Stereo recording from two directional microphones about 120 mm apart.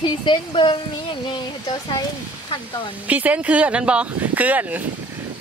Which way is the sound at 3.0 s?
10° right (ahead or behind).